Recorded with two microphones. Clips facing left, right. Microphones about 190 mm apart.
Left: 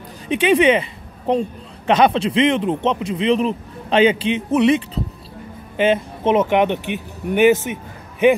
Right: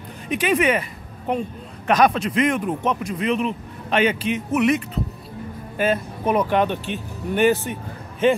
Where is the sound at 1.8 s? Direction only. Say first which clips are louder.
Left 3 dB; 25° left (ahead or behind).